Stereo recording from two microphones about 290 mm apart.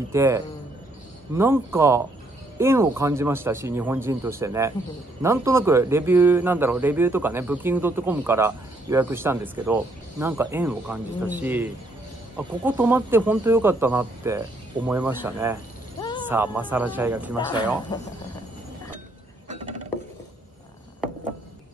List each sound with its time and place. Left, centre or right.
0.1 s speech: centre
16.0 s a sound: centre
16.3 s a man's voice: centre
17.9 s speech: centre